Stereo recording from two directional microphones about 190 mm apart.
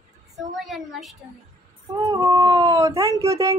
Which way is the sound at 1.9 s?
20° right (ahead or behind).